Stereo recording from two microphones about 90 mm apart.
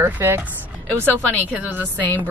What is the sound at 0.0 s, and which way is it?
Speech, 25° right (ahead or behind).